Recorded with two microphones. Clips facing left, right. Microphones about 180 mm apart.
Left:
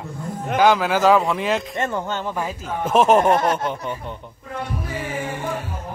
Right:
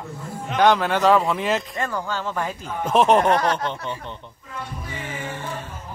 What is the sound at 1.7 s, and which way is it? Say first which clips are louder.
Speech: left 2 dB; 20° left (ahead or behind).